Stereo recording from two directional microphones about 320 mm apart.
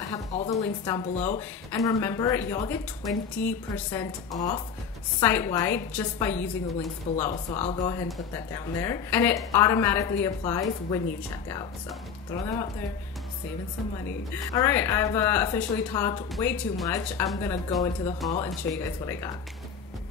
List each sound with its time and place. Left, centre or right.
0.3 s a woman's voice: left
0.8 s speech: centre
14.3 s speech: centre